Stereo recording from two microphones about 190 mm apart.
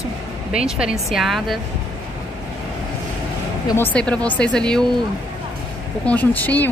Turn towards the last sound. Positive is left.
turn(degrees=10)  # may be behind; listen again after turning